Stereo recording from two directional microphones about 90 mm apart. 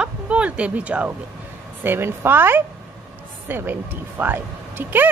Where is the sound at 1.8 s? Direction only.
25° right (ahead or behind).